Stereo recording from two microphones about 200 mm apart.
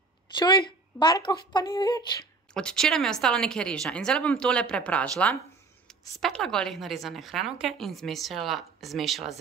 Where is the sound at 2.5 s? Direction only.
5° left (ahead or behind).